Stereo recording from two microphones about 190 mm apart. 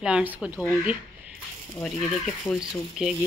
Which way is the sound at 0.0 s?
5° right (ahead or behind).